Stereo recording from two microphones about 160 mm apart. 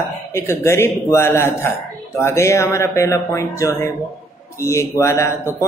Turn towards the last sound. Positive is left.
turn(degrees=15)  # may be behind; listen again after turning